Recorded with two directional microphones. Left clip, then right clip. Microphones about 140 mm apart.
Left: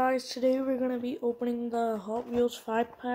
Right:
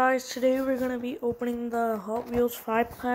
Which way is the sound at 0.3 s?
5° left (ahead or behind).